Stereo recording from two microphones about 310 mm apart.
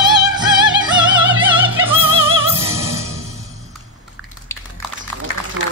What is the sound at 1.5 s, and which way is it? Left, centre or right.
Opera, centre.